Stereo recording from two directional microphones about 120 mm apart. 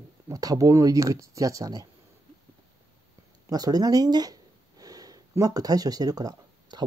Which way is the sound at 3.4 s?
30° right (ahead or behind).